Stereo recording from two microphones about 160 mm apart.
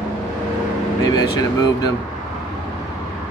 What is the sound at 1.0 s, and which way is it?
Speech, 25° left (ahead or behind).